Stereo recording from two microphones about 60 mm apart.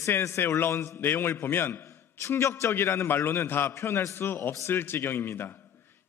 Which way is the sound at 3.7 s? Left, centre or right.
Left.